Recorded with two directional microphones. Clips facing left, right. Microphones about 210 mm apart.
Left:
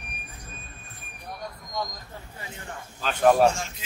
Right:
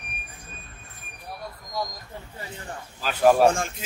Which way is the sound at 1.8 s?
5° right (ahead or behind).